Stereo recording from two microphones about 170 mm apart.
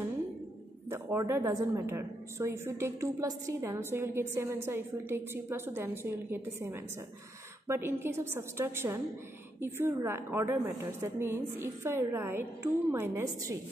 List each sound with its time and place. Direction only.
0.8 s a woman's voice: 15° right (ahead or behind)